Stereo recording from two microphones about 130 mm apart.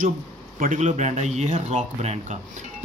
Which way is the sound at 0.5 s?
70° right (ahead or behind).